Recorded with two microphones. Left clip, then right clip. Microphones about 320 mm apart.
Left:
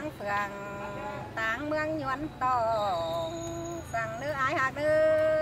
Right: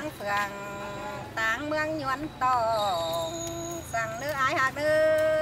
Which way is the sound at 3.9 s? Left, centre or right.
Centre.